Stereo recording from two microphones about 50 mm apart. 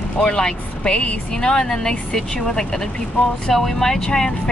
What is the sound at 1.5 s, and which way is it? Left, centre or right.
Speech, centre.